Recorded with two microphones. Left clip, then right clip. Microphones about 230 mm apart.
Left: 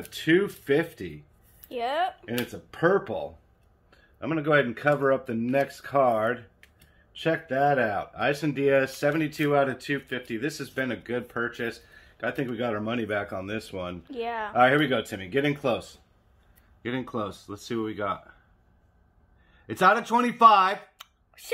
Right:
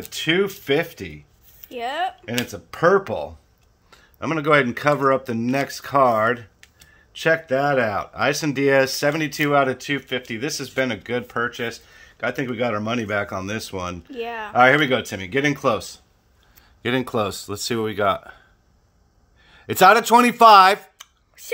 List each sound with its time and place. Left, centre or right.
0.2 s speech: right
1.7 s speech: centre
2.7 s speech: right
4.2 s speech: right
14.1 s speech: centre
14.5 s speech: right
16.8 s speech: right
19.5 s speech: right
21.4 s speech: centre